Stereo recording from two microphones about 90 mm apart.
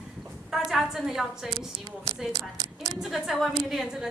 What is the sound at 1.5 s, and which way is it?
Speech, 65° right (ahead or behind).